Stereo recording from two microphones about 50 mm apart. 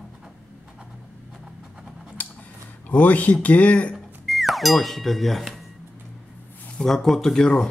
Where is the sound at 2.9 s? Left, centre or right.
Left.